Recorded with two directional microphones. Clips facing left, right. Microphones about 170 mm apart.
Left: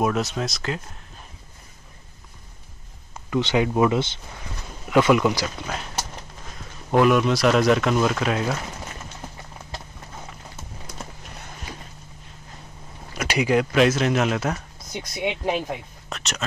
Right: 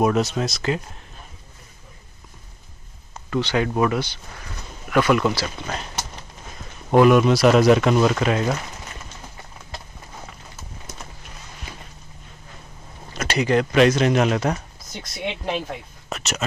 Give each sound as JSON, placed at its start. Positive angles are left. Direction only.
{"t": 0.0, "sound": "speech", "side_deg": 0}
{"t": 3.3, "sound": "speech", "side_deg": 20}
{"t": 6.9, "sound": "speech", "side_deg": -5}
{"t": 13.1, "sound": "speech", "side_deg": 10}
{"t": 16.1, "sound": "speech", "side_deg": -5}